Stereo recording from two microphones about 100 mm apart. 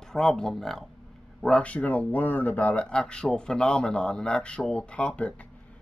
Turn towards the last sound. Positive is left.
turn(degrees=15)  # may be behind; listen again after turning